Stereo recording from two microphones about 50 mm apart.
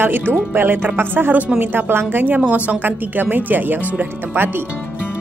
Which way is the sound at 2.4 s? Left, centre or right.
Right.